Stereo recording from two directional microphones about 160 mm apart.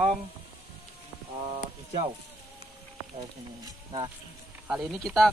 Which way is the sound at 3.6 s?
25° right (ahead or behind).